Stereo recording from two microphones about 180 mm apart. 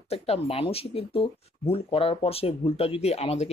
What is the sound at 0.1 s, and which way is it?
Speech, 35° left (ahead or behind).